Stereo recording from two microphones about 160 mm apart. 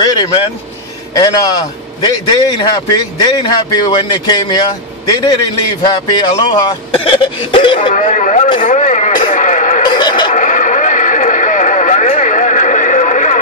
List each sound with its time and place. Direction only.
0.2 s speech: 35° left (ahead or behind)
1.1 s a man's voice: 25° left (ahead or behind)
7.9 s speech: 50° left (ahead or behind)
9.3 s a sound: 50° left (ahead or behind)
9.8 s a sound: 30° left (ahead or behind)
10.3 s radio: 50° left (ahead or behind)